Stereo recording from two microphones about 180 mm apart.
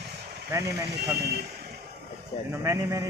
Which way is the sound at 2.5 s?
15° right (ahead or behind).